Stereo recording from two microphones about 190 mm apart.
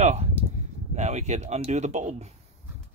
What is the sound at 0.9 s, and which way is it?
Speech, 35° right (ahead or behind).